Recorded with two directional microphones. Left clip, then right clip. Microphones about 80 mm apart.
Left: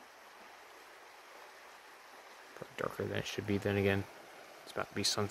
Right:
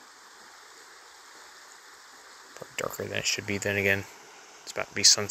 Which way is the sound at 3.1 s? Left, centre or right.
Centre.